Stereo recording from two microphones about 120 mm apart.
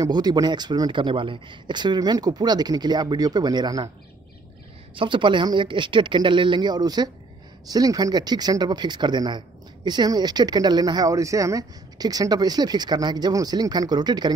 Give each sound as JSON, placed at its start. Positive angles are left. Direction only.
{"t": 0.0, "sound": "speech", "side_deg": -35}
{"t": 4.9, "sound": "speech", "side_deg": -45}